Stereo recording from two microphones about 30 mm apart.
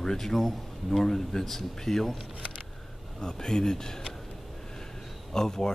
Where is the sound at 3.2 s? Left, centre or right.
Left.